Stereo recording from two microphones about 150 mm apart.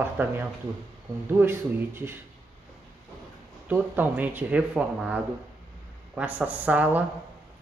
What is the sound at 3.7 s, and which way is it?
Speech, 15° right (ahead or behind).